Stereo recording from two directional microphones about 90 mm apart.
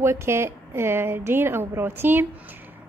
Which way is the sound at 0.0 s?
30° right (ahead or behind).